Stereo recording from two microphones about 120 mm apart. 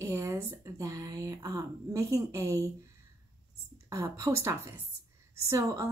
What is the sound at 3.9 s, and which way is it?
A woman's voice, 25° right (ahead or behind).